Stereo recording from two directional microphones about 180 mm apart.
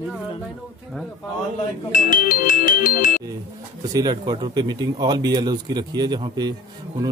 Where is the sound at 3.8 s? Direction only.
20° right (ahead or behind).